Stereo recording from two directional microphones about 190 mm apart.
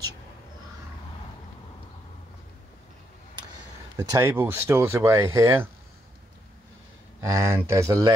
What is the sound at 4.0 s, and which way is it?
Speech, 15° right (ahead or behind).